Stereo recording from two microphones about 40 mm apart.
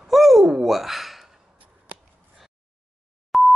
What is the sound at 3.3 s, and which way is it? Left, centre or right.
Dial tone, centre.